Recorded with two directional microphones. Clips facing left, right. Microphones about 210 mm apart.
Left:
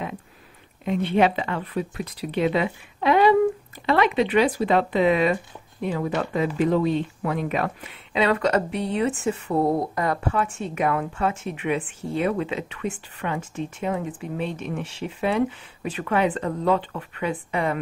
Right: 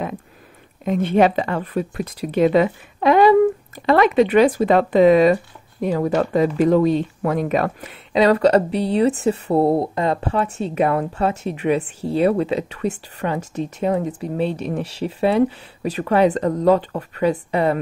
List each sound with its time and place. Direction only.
0.8 s speech: 45° right (ahead or behind)